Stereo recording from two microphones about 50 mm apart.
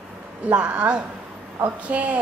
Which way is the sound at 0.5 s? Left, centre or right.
Right.